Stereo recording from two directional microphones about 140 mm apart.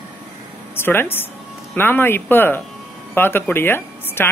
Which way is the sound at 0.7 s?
15° left (ahead or behind).